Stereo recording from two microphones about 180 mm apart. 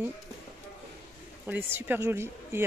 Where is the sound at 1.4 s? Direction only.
10° right (ahead or behind).